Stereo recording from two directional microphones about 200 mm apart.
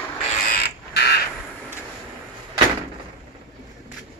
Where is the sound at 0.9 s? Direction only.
55° left (ahead or behind).